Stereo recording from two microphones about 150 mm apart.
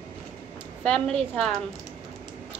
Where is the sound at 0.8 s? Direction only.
5° left (ahead or behind).